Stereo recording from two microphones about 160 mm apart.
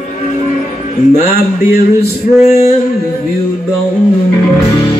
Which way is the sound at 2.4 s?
40° left (ahead or behind).